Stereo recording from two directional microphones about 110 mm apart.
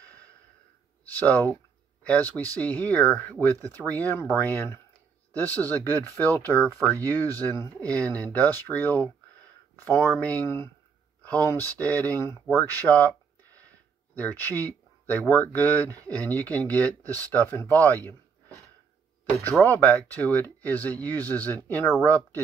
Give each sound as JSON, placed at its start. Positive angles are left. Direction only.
{"t": 1.0, "sound": "speech", "side_deg": 15}
{"t": 14.1, "sound": "speech", "side_deg": 15}
{"t": 19.2, "sound": "speech", "side_deg": 15}